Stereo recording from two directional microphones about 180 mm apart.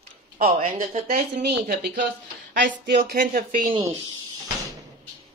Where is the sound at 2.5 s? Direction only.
50° right (ahead or behind).